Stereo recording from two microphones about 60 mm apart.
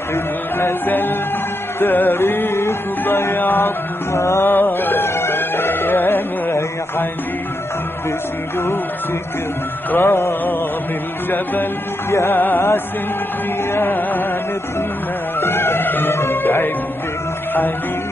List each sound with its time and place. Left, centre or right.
0.1 s music: left
4.6 s music: left
9.8 s music: left
12.1 s music: left
12.4 s music: left
13.7 s music: left
15.4 s music: left